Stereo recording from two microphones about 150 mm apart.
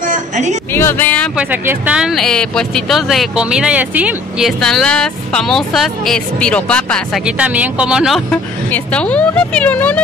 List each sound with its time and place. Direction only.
0.0 s a sound: 55° right (ahead or behind)
0.7 s speech: 15° left (ahead or behind)
1.3 s speech: 10° right (ahead or behind); by 7.0 s 5° left (ahead or behind)
7.2 s speech: 10° right (ahead or behind)
8.3 s speech: 10° left (ahead or behind)